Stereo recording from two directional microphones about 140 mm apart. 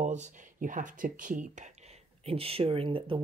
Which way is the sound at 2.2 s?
45° right (ahead or behind).